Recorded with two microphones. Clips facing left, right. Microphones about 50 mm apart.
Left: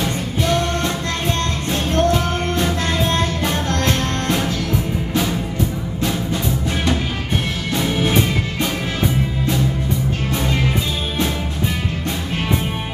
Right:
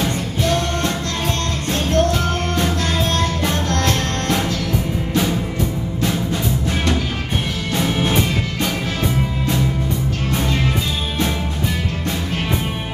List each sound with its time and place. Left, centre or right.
0.4 s music: centre
7.7 s music: centre